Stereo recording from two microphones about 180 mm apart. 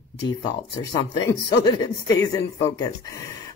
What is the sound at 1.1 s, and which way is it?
Speech, 25° left (ahead or behind).